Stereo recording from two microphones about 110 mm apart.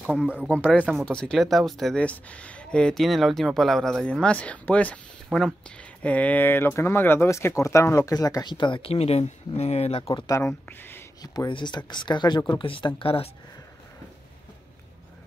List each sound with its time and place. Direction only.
0.5 s speech: 10° left (ahead or behind); by 10.2 s 60° left (ahead or behind)
10.2 s speech: 30° left (ahead or behind)
10.8 s a sound: 20° left (ahead or behind)
11.2 s speech: 40° left (ahead or behind)